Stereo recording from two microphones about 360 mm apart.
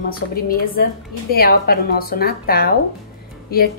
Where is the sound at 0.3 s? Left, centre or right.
Left.